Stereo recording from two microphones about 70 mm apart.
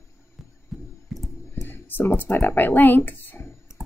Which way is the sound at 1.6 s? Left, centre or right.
Left.